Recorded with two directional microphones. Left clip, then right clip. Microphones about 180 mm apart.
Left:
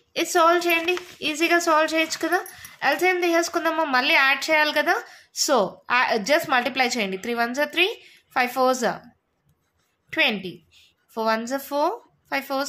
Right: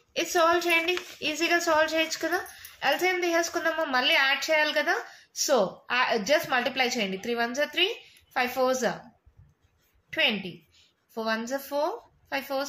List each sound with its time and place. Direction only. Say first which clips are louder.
0.1 s a woman's voice: left 5 dB; 40° left (ahead or behind)
10.0 s a woman's voice: left 4 dB; 45° left (ahead or behind)